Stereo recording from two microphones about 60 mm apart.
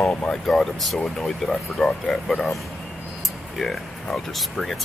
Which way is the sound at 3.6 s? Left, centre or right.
Centre.